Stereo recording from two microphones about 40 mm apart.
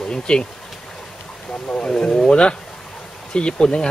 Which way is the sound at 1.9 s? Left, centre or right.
Centre.